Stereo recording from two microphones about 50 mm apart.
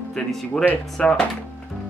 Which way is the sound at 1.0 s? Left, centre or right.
Left.